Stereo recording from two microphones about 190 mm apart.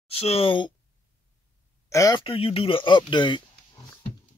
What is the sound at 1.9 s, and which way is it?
Speech, 20° left (ahead or behind).